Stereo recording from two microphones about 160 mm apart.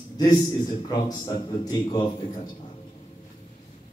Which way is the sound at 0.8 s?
25° left (ahead or behind).